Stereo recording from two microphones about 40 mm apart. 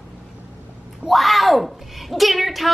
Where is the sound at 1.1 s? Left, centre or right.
Centre.